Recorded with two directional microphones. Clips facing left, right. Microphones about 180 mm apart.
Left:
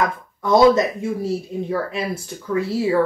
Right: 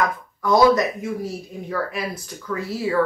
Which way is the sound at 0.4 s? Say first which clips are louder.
Left 2 dB; 25° left (ahead or behind).